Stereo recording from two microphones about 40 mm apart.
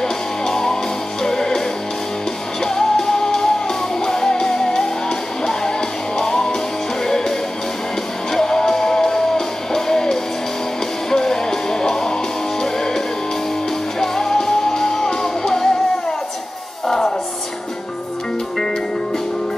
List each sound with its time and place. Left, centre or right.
0.0 s music: centre
2.6 s music: centre
16.8 s music: centre